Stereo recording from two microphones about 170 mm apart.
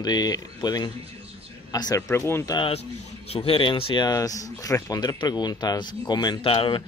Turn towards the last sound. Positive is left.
turn(degrees=30)  # may be behind; listen again after turning